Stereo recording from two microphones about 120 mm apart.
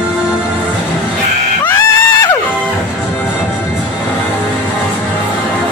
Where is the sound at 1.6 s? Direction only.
25° left (ahead or behind).